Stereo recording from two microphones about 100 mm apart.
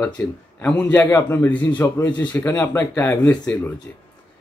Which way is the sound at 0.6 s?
20° left (ahead or behind).